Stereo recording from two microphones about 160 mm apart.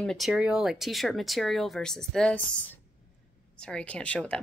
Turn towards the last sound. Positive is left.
turn(degrees=10)  # may be behind; listen again after turning